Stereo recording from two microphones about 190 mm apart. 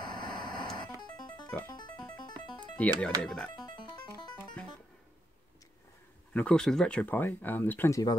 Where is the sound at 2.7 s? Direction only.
5° left (ahead or behind).